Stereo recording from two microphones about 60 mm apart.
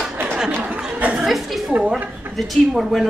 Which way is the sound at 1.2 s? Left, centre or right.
Centre.